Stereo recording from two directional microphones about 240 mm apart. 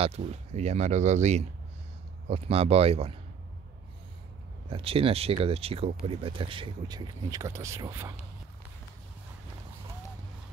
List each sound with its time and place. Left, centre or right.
0.0 s speech: right
4.6 s speech: right